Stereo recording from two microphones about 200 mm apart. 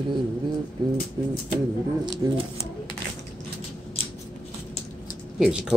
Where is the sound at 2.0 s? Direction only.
20° right (ahead or behind).